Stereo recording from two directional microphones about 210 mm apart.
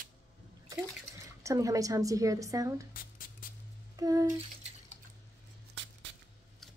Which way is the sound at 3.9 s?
15° right (ahead or behind).